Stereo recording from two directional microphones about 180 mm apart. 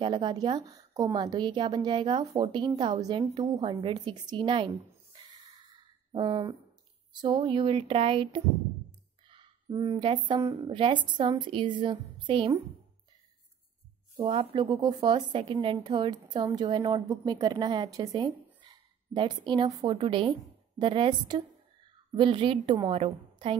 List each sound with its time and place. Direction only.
0.0 s a woman's voice: 25° right (ahead or behind)
5.7 s a sound: 25° right (ahead or behind)
7.1 s a woman's voice: 25° right (ahead or behind)
14.1 s a woman's voice: 30° right (ahead or behind)